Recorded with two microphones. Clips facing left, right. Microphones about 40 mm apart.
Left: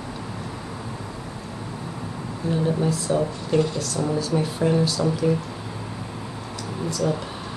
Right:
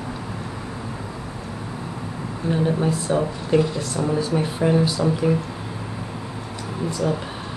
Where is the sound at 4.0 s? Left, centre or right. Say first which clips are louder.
Right 2 dB; right.